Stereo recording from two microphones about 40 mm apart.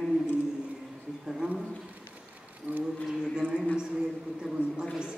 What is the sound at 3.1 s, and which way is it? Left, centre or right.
A man's voice, centre.